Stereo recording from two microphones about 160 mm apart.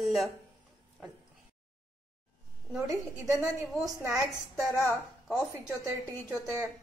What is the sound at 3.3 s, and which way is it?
A woman's voice, 15° right (ahead or behind).